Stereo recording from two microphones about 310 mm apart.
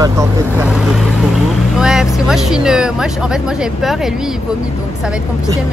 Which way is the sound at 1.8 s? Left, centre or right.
Centre.